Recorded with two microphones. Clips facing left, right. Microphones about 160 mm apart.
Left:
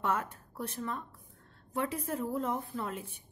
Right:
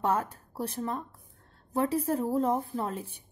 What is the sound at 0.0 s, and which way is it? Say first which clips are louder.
A woman's voice: right 4 dB; 35° right (ahead or behind).